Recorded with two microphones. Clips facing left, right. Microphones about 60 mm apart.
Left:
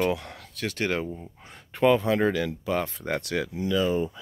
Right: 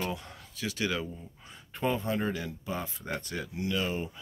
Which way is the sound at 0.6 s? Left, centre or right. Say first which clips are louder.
Left 4 dB; left.